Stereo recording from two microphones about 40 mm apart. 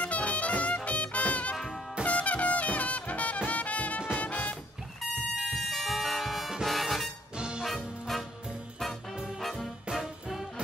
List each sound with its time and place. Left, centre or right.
0.0 s music: left
5.3 s music: centre
7.3 s music: right
7.6 s music: centre
9.4 s music: centre